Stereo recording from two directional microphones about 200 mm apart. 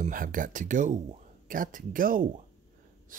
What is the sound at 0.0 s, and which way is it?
Speech, 45° right (ahead or behind).